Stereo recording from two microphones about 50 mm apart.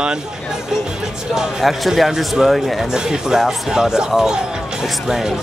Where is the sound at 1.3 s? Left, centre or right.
Centre.